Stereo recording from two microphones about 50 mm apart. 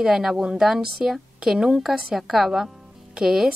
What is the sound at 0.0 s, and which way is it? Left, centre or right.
A woman's voice, centre.